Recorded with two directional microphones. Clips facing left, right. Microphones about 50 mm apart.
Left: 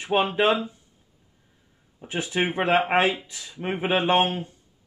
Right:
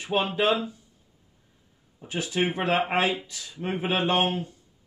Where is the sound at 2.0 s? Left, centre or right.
Left.